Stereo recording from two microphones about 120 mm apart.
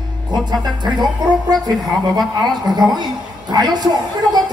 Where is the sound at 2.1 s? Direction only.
35° right (ahead or behind).